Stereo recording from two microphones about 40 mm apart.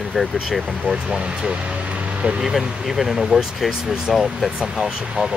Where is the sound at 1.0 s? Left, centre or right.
Right.